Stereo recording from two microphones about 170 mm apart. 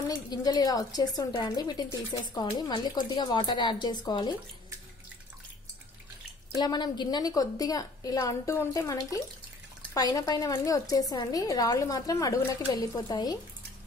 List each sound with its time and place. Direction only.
0.1 s a woman's voice: 20° left (ahead or behind)
6.5 s a woman's voice: 25° left (ahead or behind)